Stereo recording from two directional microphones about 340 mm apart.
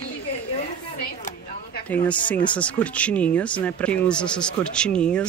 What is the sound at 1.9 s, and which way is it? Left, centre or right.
Speech, centre.